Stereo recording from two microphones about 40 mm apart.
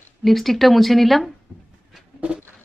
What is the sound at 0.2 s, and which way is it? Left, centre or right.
Speech, centre.